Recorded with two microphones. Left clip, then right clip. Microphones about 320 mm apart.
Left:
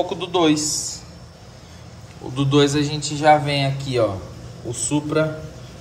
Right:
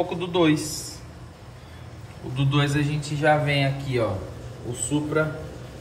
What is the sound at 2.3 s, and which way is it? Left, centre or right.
Speech, centre.